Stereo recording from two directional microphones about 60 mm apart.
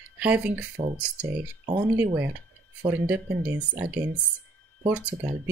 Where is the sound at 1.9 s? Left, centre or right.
Right.